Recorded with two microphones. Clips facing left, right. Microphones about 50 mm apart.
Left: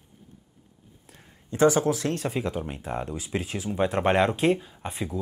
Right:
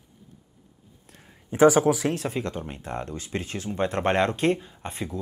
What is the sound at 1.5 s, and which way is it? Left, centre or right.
Speech, right.